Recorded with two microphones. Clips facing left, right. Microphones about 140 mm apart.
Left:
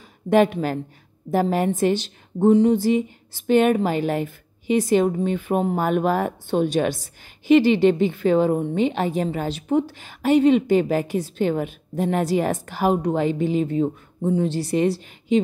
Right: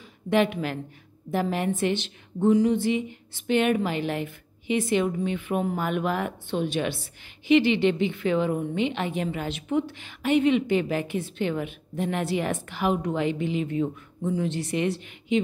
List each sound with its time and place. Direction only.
0.3 s a woman's voice: 40° left (ahead or behind)